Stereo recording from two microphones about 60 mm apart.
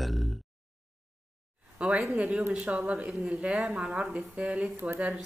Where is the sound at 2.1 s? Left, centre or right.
Right.